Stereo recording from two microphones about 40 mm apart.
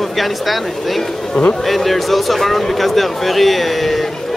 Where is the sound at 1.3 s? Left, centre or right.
Left.